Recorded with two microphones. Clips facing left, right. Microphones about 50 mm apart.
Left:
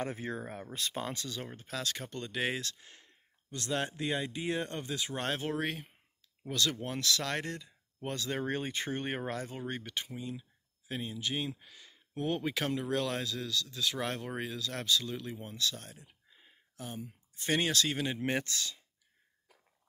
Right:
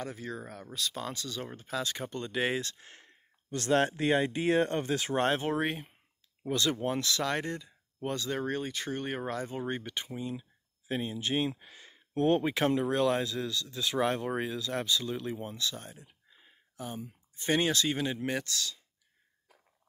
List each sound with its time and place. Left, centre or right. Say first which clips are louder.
0.0 s speech: left 2 dB; left
1.0 s speech: right 1 dB; centre
1.5 s speech: right 5 dB; centre
2.6 s a sound: right 1 dB; right
3.5 s speech: right 8 dB; right
5.1 s speech: right 6 dB; right; by 9.4 s centre
9.4 s speech: right 4 dB; centre
11.1 s speech: right 4 dB; right
12.4 s speech: right 5 dB; right; by 18.0 s centre
18.2 s speech: even; centre